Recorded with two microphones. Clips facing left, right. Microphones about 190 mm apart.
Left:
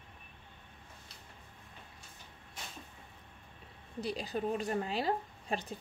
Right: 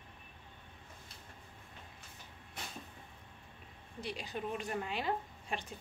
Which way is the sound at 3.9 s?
35° left (ahead or behind).